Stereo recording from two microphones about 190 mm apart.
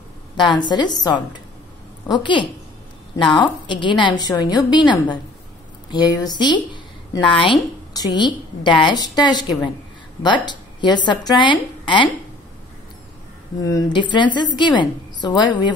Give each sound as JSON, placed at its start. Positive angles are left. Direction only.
{"t": 0.4, "sound": "a woman's voice", "side_deg": 25}
{"t": 13.6, "sound": "a woman's voice", "side_deg": 20}